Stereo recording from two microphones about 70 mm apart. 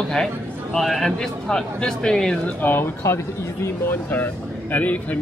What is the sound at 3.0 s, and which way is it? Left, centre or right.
Speech, left.